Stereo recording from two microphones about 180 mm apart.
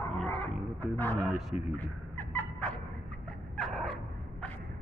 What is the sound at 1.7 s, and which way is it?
Fowl, 10° left (ahead or behind).